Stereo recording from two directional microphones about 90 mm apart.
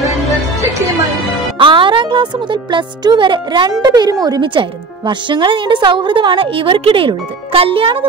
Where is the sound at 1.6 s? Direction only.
65° right (ahead or behind).